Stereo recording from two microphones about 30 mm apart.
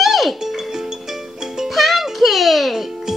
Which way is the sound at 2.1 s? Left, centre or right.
Centre.